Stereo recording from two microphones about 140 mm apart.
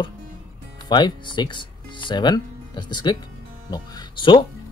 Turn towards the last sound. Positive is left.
turn(degrees=35)  # may be behind; listen again after turning